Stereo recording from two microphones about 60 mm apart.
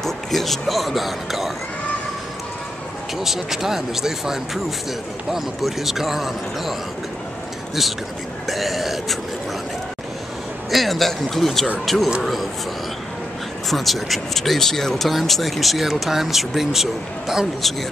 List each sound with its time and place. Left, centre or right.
0.0 s speech: centre
3.2 s speech: centre
8.5 s speech: centre
10.7 s speech: centre
13.7 s speech: centre